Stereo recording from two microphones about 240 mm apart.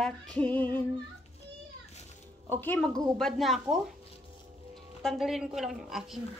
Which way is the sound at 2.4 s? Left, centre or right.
Centre.